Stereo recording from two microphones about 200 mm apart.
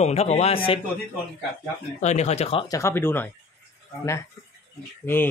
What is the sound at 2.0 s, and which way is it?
Speech, 35° left (ahead or behind).